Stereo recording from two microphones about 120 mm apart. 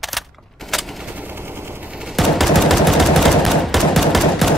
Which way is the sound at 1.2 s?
15° right (ahead or behind).